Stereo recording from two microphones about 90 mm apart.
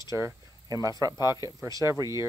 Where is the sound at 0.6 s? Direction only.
45° right (ahead or behind).